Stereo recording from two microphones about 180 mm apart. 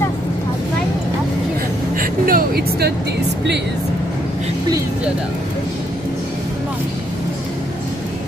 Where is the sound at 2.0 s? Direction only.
55° right (ahead or behind).